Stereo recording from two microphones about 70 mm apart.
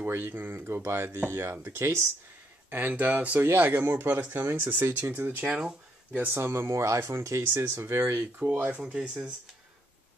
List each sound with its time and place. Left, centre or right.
0.0 s speech: right
2.7 s speech: right
6.3 s speech: right
8.4 s speech: right
8.8 s speech: centre